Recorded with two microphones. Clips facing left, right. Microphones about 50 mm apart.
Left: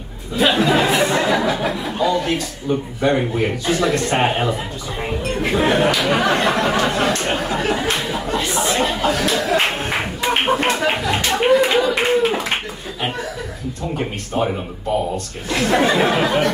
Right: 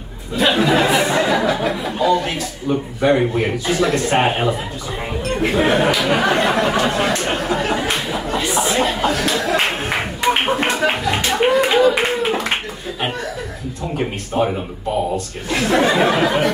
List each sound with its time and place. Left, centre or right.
0.8 s a man's voice: centre
5.4 s a sound: centre
10.2 s music: centre
11.5 s clapping: centre
13.9 s speech: centre